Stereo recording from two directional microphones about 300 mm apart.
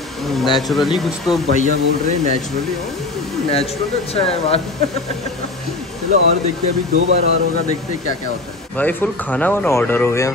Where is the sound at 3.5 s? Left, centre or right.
Centre.